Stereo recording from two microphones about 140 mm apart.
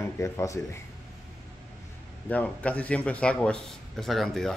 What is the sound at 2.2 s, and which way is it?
Speech, 10° left (ahead or behind).